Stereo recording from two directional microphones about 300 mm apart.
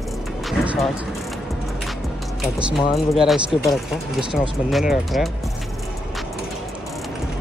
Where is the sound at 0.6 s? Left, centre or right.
Centre.